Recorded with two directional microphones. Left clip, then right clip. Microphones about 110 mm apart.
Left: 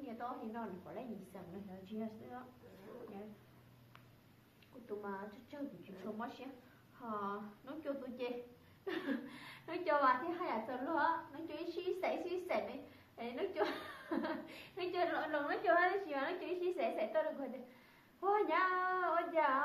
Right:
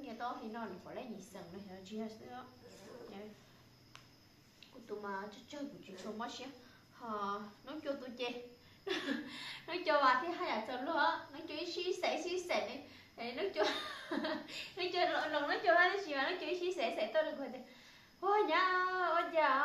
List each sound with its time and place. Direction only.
0.0 s a woman's voice: 30° right (ahead or behind)
4.8 s a woman's voice: 30° right (ahead or behind)
7.0 s a woman's voice: 25° right (ahead or behind)